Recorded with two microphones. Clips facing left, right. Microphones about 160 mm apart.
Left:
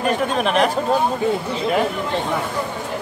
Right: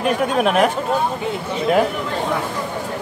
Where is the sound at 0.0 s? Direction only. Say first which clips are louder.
Right 2 dB; 5° right (ahead or behind).